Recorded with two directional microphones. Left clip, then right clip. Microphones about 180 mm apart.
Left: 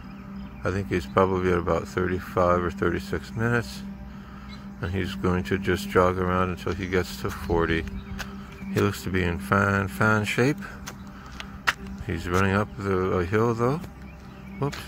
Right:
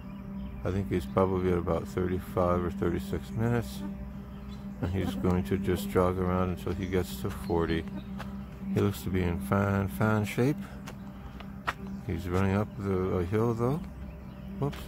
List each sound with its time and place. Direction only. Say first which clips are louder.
0.7 s speech: left 5 dB; 10° left (ahead or behind)
4.8 s speech: left 4 dB; 5° left (ahead or behind)
11.7 s music: left 9 dB; 65° left (ahead or behind)
12.1 s speech: left 7 dB; 15° left (ahead or behind)